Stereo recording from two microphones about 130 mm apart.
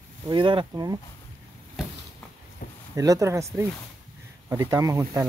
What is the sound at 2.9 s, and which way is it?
Speech, 25° right (ahead or behind).